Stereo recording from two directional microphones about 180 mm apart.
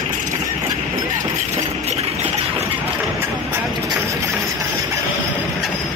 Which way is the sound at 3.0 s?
10° right (ahead or behind).